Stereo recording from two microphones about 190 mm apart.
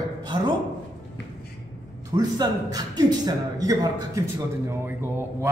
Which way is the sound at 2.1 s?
20° right (ahead or behind).